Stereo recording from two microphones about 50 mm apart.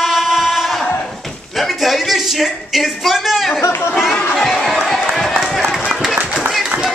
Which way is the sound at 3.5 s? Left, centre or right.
Left.